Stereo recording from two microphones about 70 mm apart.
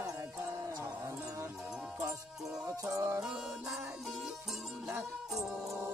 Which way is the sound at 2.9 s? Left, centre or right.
Right.